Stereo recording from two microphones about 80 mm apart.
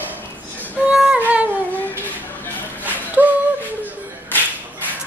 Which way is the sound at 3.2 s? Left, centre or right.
Right.